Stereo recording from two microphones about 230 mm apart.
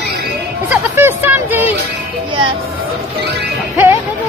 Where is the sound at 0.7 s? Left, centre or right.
Centre.